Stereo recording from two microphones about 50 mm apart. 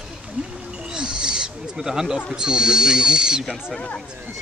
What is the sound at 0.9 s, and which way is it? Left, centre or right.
Owl, centre.